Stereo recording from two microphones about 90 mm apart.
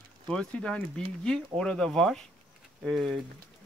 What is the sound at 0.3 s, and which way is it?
Speech, 10° left (ahead or behind).